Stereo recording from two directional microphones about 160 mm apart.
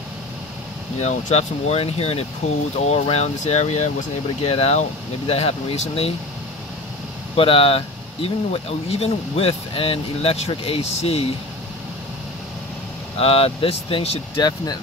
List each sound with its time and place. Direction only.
1.0 s speech: 40° left (ahead or behind)
7.3 s speech: 35° left (ahead or behind)
13.2 s speech: 40° left (ahead or behind)